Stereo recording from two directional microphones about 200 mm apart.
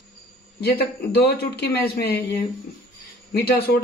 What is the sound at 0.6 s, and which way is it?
A man's voice, 55° left (ahead or behind).